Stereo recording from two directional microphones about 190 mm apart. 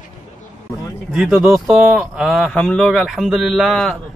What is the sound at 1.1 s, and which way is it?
A man's voice, 5° right (ahead or behind).